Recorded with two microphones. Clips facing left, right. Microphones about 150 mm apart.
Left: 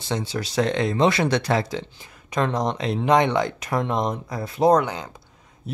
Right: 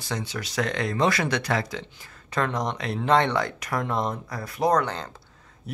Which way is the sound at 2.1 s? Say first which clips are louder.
Left 3 dB; 15° left (ahead or behind).